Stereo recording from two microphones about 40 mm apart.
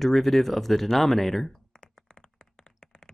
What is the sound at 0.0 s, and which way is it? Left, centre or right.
Speech, centre.